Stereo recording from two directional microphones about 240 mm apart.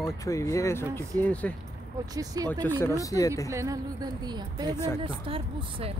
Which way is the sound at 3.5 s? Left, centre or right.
Centre.